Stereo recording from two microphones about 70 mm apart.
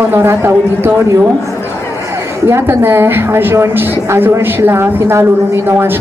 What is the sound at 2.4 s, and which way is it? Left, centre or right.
A woman's voice, right.